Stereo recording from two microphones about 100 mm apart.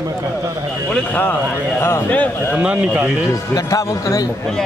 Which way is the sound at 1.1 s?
15° left (ahead or behind).